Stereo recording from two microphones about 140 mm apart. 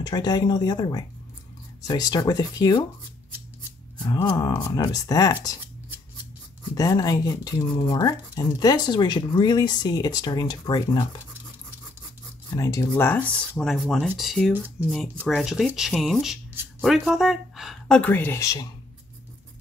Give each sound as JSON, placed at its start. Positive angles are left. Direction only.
{"t": 0.0, "sound": "speech", "side_deg": 30}
{"t": 4.0, "sound": "speech", "side_deg": 30}
{"t": 6.7, "sound": "speech", "side_deg": 25}
{"t": 12.5, "sound": "speech", "side_deg": 25}
{"t": 14.8, "sound": "speech", "side_deg": -10}
{"t": 15.2, "sound": "speech", "side_deg": 0}